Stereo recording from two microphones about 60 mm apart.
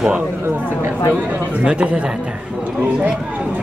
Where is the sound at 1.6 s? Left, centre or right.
Centre.